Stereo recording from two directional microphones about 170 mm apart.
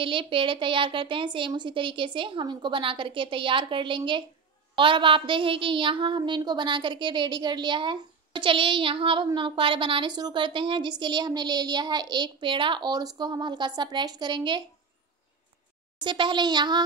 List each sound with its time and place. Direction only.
0.0 s a woman's voice: 30° right (ahead or behind)
16.0 s a woman's voice: 25° right (ahead or behind)